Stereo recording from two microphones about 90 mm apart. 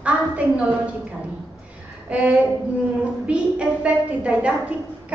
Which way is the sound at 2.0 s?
15° right (ahead or behind).